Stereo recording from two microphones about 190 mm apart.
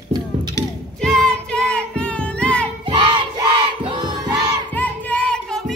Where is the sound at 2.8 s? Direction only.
25° right (ahead or behind).